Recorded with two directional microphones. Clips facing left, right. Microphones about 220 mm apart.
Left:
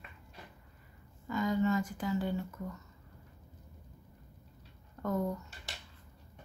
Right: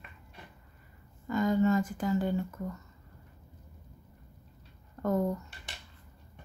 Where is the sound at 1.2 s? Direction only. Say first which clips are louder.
Right 4 dB; 45° right (ahead or behind).